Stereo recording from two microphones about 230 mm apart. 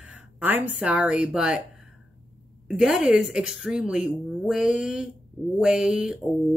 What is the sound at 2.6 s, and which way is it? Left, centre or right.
Speech, centre.